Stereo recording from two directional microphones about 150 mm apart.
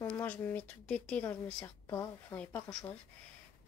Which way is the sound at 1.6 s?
20° left (ahead or behind).